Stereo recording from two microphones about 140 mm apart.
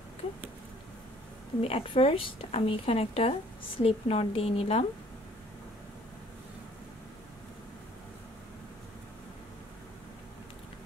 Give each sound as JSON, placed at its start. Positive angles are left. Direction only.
{"t": 1.6, "sound": "a woman's voice", "side_deg": 45}